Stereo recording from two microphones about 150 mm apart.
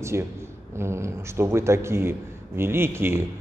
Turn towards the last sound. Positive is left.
turn(degrees=-15)  # may be behind; listen again after turning